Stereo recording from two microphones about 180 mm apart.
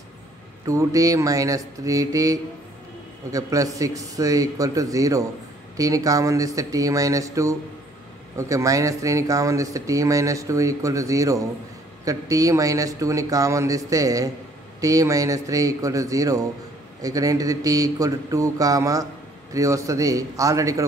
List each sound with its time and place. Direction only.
0.7 s a man's voice: 20° right (ahead or behind)